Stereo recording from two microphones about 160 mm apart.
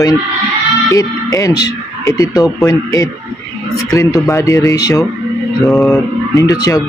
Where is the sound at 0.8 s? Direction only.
20° left (ahead or behind).